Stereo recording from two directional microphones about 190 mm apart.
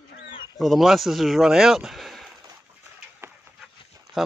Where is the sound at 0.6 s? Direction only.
Centre (ahead or behind).